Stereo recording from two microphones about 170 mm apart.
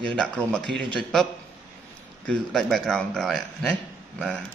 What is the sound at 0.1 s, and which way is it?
Speech, 5° left (ahead or behind).